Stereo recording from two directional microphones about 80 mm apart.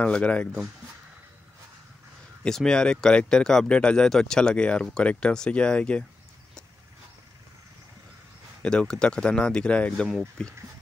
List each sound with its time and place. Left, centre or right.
0.0 s speech: centre
2.4 s speech: centre
8.6 s speech: centre